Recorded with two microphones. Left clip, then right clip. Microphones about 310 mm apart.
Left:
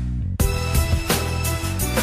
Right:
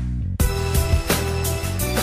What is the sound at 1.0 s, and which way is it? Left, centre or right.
Music, left.